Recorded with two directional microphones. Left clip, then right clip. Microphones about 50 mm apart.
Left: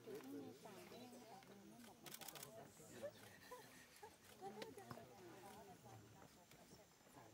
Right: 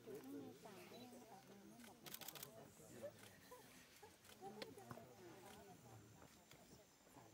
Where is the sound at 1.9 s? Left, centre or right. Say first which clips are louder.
Even; centre.